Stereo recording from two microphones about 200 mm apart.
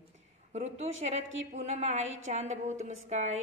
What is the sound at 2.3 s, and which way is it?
A woman's voice, 35° right (ahead or behind).